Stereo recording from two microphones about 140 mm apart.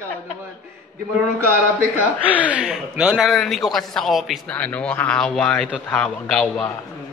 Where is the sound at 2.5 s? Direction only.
5° right (ahead or behind).